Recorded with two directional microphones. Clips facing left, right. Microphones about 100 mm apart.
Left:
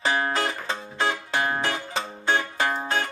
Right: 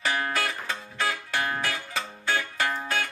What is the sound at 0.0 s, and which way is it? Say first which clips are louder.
Music: left 3 dB; 25° left (ahead or behind).